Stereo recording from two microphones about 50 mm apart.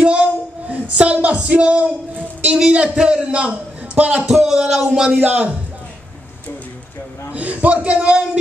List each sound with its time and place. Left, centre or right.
0.0 s child singing: right
2.5 s a man's voice: centre
4.3 s speech: centre
5.1 s a man's voice: right
7.3 s speech: right